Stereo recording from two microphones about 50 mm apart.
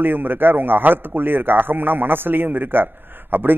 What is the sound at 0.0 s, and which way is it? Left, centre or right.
A man's voice, right.